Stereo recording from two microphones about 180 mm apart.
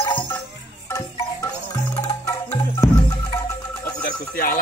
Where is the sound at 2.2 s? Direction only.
10° left (ahead or behind).